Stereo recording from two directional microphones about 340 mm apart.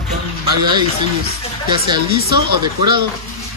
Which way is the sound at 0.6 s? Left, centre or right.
Centre.